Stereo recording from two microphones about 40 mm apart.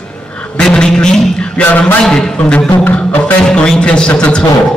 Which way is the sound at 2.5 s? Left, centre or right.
Left.